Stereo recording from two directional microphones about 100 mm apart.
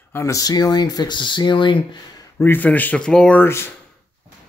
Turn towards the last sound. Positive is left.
turn(degrees=10)  # may be behind; listen again after turning